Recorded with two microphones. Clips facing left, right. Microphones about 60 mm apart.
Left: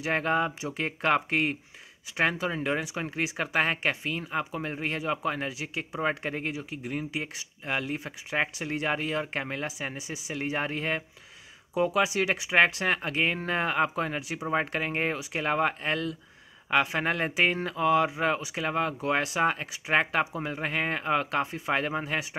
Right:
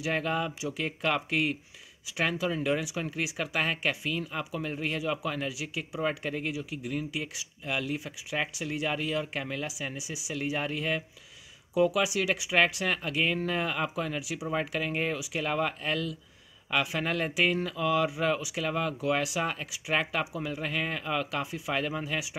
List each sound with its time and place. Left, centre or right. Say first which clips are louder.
0.0 s speech: left 3 dB; left